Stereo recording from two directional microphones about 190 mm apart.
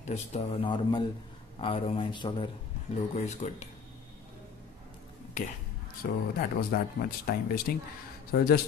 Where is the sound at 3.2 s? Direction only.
40° left (ahead or behind).